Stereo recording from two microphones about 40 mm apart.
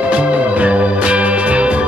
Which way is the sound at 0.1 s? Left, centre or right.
Right.